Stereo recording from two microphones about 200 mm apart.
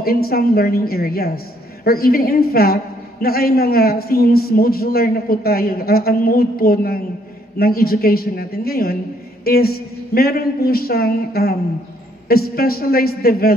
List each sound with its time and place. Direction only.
0.0 s a woman's voice: 50° left (ahead or behind)